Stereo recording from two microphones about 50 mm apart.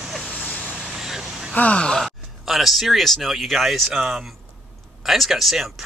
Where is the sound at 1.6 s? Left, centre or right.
Left.